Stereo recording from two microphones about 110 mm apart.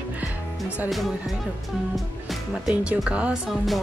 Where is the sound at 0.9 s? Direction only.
Centre (ahead or behind).